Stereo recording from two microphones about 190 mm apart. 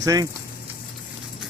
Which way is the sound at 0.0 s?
20° right (ahead or behind).